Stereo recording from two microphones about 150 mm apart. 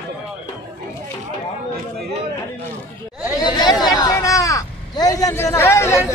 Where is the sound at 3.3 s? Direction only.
25° left (ahead or behind).